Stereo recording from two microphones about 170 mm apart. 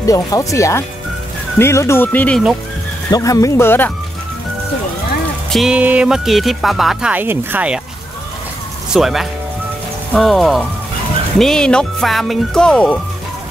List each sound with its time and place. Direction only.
0.0 s speech: 20° left (ahead or behind)
3.1 s speech: 20° left (ahead or behind)
5.5 s speech: centre (ahead or behind)
8.9 s speech: centre (ahead or behind)